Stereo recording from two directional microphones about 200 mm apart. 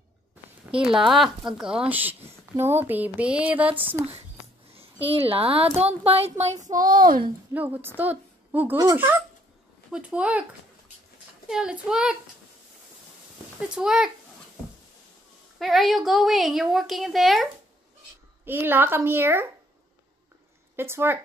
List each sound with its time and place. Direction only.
0.7 s speech: 5° right (ahead or behind)
5.1 s speech: 30° right (ahead or behind)
6.6 s a woman's voice: 45° right (ahead or behind)
7.5 s speech: 10° right (ahead or behind)
11.4 s a woman's voice: 5° right (ahead or behind)
13.6 s a woman's voice: 5° right (ahead or behind)
15.6 s a woman's voice: centre (ahead or behind)
18.4 s speech: 10° right (ahead or behind)
20.7 s speech: 10° right (ahead or behind)